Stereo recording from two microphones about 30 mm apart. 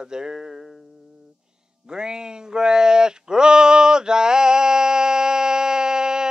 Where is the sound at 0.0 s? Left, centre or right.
Right.